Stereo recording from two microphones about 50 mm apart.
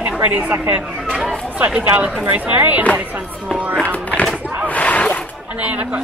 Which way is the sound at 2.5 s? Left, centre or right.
Right.